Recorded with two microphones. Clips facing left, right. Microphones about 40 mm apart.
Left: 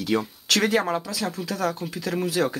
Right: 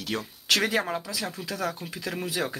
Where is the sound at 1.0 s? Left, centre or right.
Centre.